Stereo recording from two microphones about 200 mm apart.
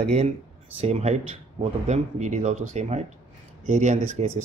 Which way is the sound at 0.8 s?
30° right (ahead or behind).